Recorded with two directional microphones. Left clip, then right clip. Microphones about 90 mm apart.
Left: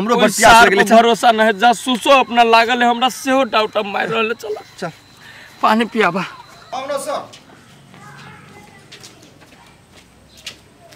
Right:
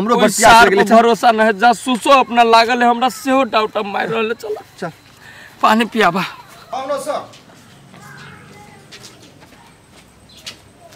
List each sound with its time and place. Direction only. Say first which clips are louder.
0.2 s speech: even; 10° right (ahead or behind)
5.6 s speech: right 1 dB; 30° right (ahead or behind)
5.9 s speech: right 2 dB; 45° right (ahead or behind)
6.7 s a woman's voice: right 1 dB; 10° left (ahead or behind)
10.5 s a sound: even; 5° left (ahead or behind)